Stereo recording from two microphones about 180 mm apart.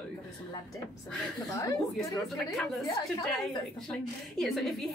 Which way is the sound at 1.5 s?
20° left (ahead or behind).